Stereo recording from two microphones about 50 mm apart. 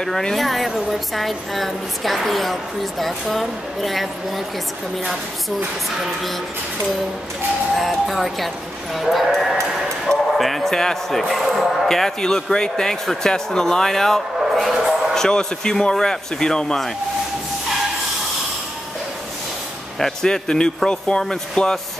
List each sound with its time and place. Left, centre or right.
0.0 s a woman's voice: centre
7.7 s a woman's voice: centre
14.4 s a sound: centre
15.1 s speech: centre
20.0 s speech: centre